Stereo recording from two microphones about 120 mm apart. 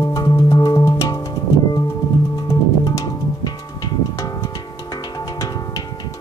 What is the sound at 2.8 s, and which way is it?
Music, 35° left (ahead or behind).